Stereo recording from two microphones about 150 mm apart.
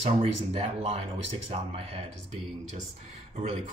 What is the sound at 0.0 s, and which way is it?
Speech, 45° right (ahead or behind).